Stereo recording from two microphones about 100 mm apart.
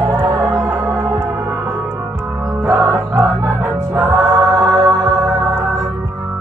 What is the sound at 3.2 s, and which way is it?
Music, 30° right (ahead or behind).